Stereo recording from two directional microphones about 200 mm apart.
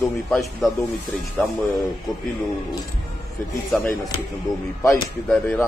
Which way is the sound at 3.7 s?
5° left (ahead or behind).